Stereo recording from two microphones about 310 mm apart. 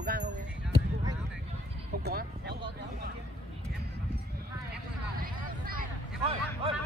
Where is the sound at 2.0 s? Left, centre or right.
Right.